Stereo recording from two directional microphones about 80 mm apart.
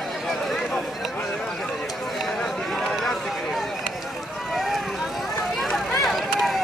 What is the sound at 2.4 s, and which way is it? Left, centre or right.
Chatter, centre.